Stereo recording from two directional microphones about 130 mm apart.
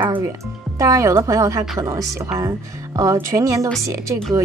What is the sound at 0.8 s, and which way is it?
A woman's voice, 25° right (ahead or behind).